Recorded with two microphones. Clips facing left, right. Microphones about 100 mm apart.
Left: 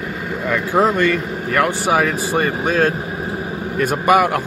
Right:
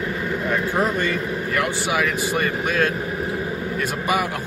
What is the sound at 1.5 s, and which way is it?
Speech, 50° left (ahead or behind).